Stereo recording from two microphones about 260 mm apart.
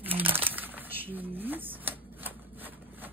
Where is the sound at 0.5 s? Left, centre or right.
Centre.